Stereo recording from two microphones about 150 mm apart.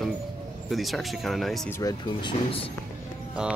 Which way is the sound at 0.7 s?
Centre (ahead or behind).